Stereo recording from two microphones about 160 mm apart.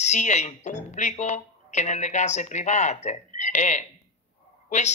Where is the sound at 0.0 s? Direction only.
45° left (ahead or behind).